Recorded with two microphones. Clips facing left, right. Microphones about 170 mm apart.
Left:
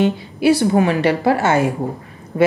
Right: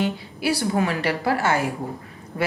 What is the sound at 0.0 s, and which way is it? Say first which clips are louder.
A woman's voice: left 9 dB; 20° left (ahead or behind).